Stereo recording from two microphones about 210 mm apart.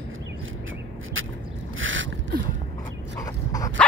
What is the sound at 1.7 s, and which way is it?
Boat, 65° right (ahead or behind).